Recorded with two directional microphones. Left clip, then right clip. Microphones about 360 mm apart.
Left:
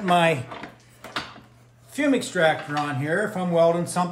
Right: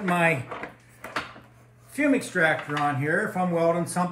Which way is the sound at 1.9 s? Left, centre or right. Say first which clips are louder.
Left 1 dB; centre.